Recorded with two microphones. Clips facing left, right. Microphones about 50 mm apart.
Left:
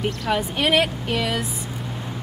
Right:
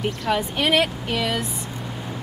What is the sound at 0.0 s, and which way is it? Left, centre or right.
Speech, centre.